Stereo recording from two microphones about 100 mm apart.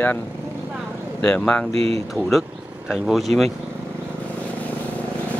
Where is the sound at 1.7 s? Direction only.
85° right.